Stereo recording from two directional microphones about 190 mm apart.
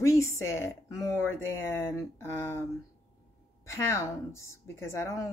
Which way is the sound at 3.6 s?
15° left (ahead or behind).